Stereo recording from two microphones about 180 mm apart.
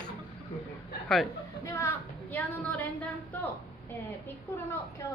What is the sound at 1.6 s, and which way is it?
A woman's voice, 15° left (ahead or behind).